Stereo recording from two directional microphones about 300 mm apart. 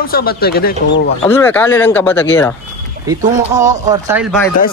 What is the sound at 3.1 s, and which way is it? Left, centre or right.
Speech, centre.